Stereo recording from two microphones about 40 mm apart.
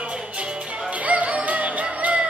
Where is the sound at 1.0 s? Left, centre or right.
Right.